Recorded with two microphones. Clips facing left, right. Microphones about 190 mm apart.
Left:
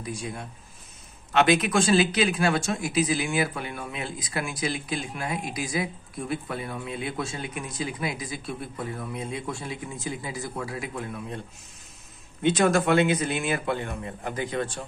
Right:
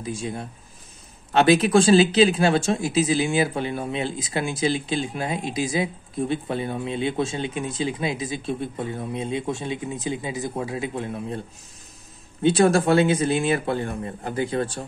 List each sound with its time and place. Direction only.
0.0 s speech: 25° right (ahead or behind)